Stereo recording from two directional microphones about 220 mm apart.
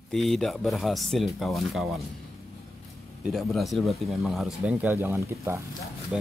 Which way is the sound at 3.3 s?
Centre (ahead or behind).